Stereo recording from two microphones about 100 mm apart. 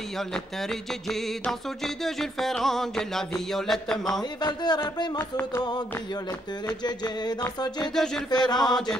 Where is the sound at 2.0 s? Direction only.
5° left (ahead or behind).